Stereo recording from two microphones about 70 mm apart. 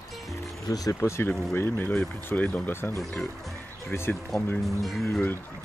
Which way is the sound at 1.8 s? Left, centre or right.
Left.